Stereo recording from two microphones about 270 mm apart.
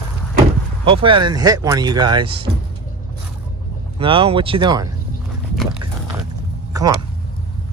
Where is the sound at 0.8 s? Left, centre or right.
Centre.